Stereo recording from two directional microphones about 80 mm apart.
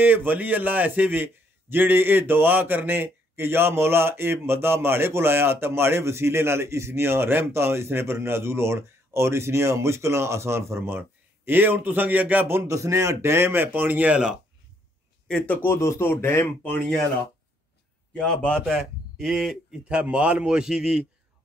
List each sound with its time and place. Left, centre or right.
0.0 s a man's voice: right
12.7 s a man's voice: right; by 14.4 s centre
15.6 s speech: left
18.1 s a man's voice: centre